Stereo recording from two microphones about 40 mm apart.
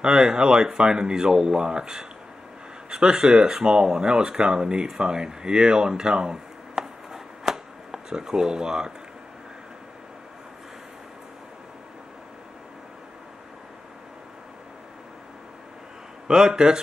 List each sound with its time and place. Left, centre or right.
0.0 s speech: centre
16.3 s speech: centre